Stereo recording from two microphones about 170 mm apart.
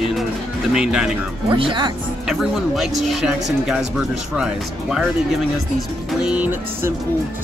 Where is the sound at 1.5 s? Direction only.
30° right (ahead or behind).